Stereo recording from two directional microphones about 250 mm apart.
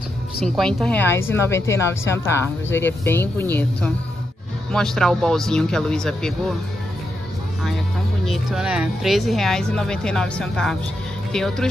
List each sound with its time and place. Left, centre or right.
0.6 s a woman's voice: centre
8.3 s speech: centre